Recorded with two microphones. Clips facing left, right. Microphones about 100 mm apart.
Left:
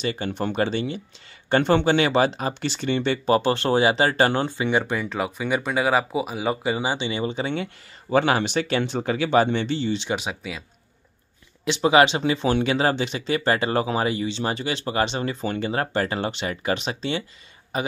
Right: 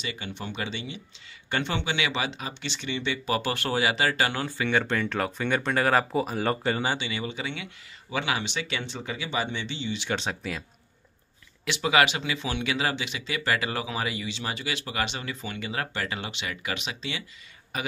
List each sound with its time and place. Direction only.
0.0 s speech: 45° left (ahead or behind)
4.5 s speech: 20° left (ahead or behind)
7.1 s speech: 30° left (ahead or behind)
10.1 s speech: 5° left (ahead or behind)
11.6 s a man's voice: 30° left (ahead or behind)